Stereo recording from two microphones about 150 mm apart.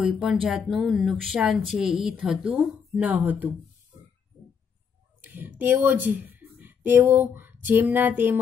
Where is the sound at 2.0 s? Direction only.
5° right (ahead or behind).